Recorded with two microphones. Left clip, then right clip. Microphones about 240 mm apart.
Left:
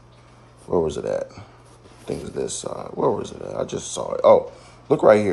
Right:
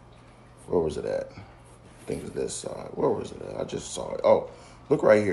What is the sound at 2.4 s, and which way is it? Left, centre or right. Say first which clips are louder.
Speech: left 4 dB; left.